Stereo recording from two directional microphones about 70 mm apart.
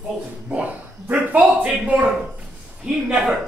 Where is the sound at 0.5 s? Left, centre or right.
Centre.